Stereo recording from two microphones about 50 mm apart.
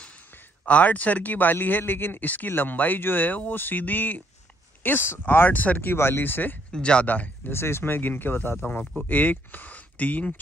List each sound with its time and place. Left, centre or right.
0.7 s speech: left
4.8 s speech: left
5.9 s speech: left
6.7 s speech: centre
7.1 s speech: left
7.5 s speech: left